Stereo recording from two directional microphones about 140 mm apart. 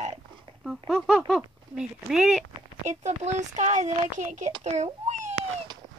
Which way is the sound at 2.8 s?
55° right (ahead or behind).